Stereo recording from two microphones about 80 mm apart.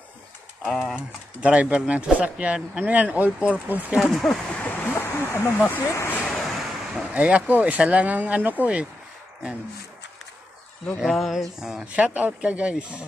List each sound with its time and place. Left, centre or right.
0.9 s speech: centre
4.0 s speech: centre
4.5 s a sound: centre
5.9 s speech: left
6.2 s vehicle: centre
7.2 s speech: centre
11.0 s speech: centre
11.9 s speech: centre